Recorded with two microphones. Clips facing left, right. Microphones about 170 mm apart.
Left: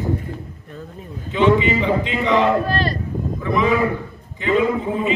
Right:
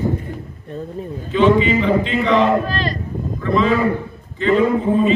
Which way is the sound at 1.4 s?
15° left (ahead or behind).